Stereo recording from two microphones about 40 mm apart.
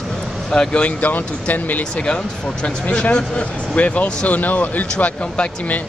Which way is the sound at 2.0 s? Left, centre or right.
Left.